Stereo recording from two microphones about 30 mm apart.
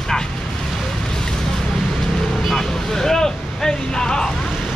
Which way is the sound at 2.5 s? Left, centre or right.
Centre.